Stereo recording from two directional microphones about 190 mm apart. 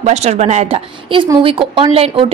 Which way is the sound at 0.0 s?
35° right (ahead or behind).